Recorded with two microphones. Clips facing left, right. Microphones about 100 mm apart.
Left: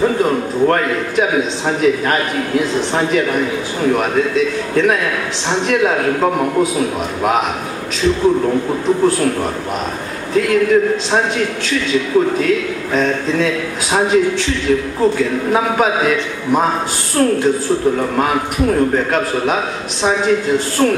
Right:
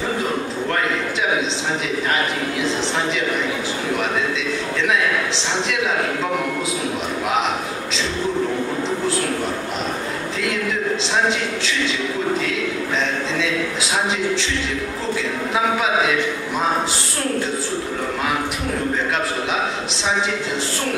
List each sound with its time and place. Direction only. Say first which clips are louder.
0.7 s a sound: left 5 dB; 45° left (ahead or behind)
1.8 s speech: left 9 dB; 50° left (ahead or behind)
4.4 s speech: left 8 dB; 50° left (ahead or behind)
10.3 s speech: left 13 dB; 50° left (ahead or behind)
12.4 s a man's voice: left 6 dB; 50° left (ahead or behind)
20.0 s speech: left 8 dB; 50° left (ahead or behind)